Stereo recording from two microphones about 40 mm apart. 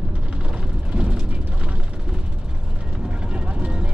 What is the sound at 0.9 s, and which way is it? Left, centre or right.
Vehicle, right.